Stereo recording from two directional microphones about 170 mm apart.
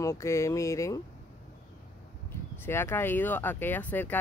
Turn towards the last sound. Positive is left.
turn(degrees=10)  # may be behind; listen again after turning